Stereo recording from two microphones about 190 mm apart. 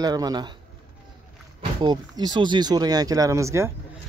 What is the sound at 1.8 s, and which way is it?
Speech, 20° right (ahead or behind).